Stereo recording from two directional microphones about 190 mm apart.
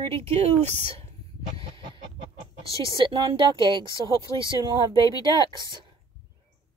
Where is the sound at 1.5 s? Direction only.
30° right (ahead or behind).